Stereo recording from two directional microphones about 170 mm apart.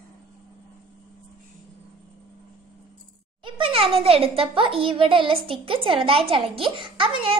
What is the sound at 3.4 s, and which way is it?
A child's voice, 30° right (ahead or behind).